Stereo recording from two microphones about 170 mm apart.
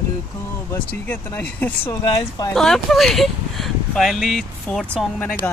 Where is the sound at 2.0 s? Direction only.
25° left (ahead or behind).